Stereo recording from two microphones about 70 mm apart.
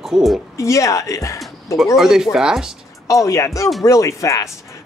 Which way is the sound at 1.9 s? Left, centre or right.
Centre.